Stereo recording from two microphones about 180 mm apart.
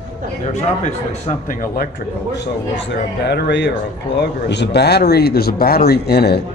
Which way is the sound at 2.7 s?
80° left.